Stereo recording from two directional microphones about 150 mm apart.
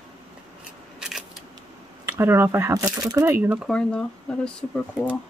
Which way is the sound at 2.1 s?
15° right (ahead or behind).